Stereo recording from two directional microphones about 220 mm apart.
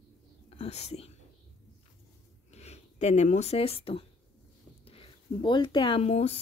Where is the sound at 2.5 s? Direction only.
30° left (ahead or behind).